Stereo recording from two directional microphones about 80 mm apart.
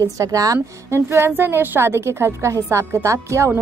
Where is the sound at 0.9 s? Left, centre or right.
Right.